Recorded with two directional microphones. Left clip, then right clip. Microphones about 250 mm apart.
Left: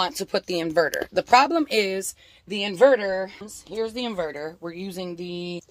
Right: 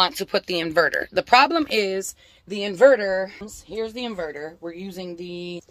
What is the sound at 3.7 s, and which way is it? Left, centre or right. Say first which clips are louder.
Speech: left 1 dB; left.